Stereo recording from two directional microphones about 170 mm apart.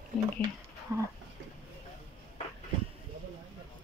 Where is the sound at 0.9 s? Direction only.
15° right (ahead or behind).